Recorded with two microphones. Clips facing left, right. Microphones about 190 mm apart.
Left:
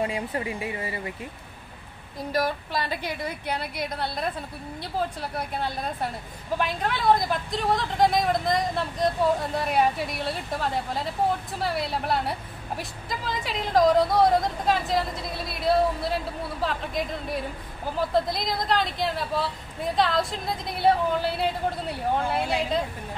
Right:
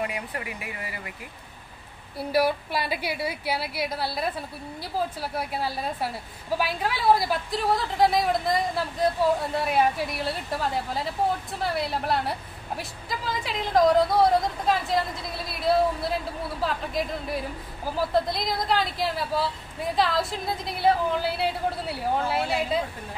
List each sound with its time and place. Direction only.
0.0 s speech: 25° left (ahead or behind)
2.1 s a woman's voice: 10° right (ahead or behind)